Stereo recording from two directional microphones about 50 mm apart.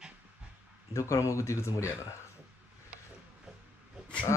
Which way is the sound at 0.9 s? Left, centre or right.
Left.